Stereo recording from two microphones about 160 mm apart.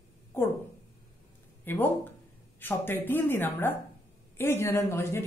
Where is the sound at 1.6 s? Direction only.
10° left (ahead or behind).